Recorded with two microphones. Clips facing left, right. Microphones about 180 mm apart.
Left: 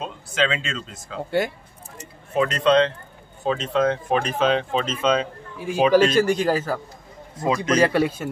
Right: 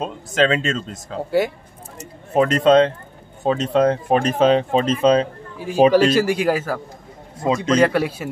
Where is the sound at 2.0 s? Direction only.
45° right (ahead or behind).